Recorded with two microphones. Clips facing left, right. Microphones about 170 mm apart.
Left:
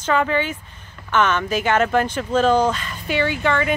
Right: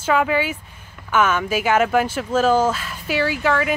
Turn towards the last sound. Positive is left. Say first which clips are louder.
# even
turn(degrees=-5)  # may be behind; listen again after turning